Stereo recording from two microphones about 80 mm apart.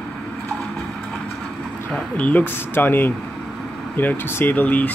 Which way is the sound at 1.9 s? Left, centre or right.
Centre.